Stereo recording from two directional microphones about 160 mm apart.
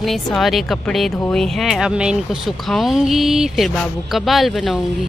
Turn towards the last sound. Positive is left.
turn(degrees=0)  # may be behind; listen again after turning